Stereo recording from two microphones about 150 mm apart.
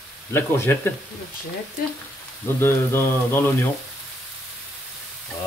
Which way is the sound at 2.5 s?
15° left (ahead or behind).